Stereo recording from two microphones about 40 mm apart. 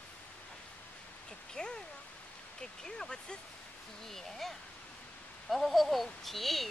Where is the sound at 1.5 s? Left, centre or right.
Centre.